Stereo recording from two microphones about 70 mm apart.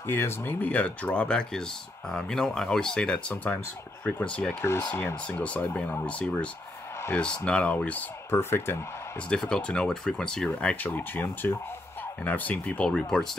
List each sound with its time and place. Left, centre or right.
0.0 s speech: left
8.3 s speech: left
9.3 s speech: centre
10.8 s speech: left
12.9 s speech: centre